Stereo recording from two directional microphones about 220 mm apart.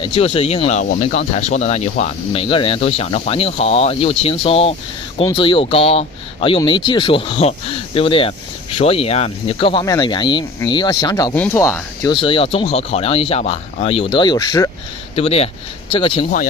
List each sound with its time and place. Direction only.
0.0 s speech: 25° left (ahead or behind)